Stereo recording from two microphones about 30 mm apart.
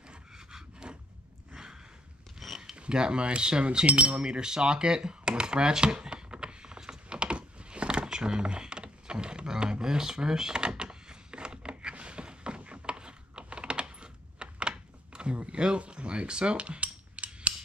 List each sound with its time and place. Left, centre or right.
0.5 s a sound: right
2.4 s mechanisms: centre
2.7 s speech: right
4.2 s a sound: right
9.5 s drawer open or close: right
15.8 s cutlery: right